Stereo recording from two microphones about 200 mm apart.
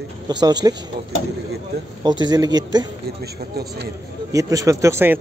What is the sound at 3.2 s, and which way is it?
Speech, 50° right (ahead or behind).